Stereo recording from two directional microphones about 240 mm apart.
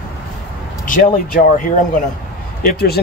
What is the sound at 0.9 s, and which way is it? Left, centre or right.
Speech, left.